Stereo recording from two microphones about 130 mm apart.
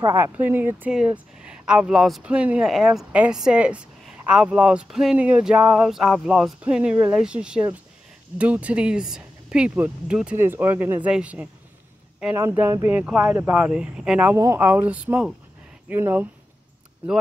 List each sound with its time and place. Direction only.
0.0 s speech: 15° right (ahead or behind)
13.6 s speech: 5° right (ahead or behind)
14.3 s speech: 20° right (ahead or behind)